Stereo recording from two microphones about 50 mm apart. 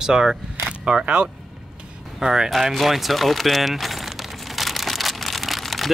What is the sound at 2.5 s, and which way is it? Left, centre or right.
Speech, centre.